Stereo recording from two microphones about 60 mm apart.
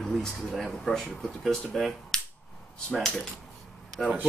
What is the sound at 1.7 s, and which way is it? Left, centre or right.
Cap gun, centre.